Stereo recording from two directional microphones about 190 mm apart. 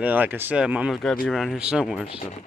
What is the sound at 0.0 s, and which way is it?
Speech, 10° right (ahead or behind).